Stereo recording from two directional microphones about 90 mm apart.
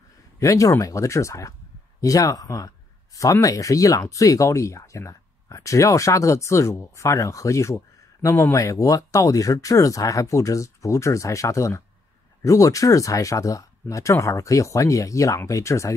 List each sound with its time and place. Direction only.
0.4 s speech: 35° left (ahead or behind)